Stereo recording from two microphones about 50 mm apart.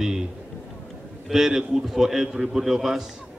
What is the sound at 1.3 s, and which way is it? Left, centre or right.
A man's voice, centre.